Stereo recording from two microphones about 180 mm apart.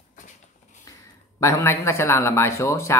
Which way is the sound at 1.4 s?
15° left (ahead or behind).